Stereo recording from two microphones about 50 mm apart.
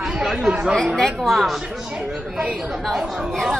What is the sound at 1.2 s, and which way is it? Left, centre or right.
Speech, centre.